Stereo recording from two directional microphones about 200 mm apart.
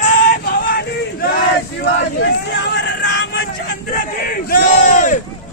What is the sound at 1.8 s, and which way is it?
Speech, 60° left (ahead or behind).